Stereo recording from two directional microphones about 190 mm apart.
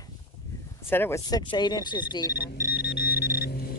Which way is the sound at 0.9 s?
10° left (ahead or behind).